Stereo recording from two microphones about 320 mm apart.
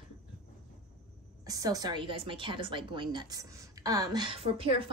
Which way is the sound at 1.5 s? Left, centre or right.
Centre.